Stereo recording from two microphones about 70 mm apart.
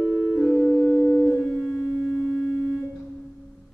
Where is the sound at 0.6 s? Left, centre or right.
Left.